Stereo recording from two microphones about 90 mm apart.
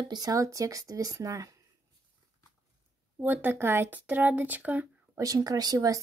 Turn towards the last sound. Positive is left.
turn(degrees=-45)  # may be behind; listen again after turning